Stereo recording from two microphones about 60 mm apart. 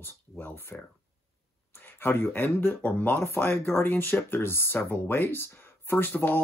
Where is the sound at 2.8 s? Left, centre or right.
Left.